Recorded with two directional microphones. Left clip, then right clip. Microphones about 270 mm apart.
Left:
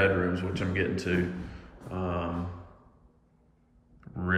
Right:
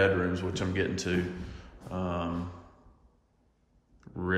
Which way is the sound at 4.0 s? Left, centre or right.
Centre.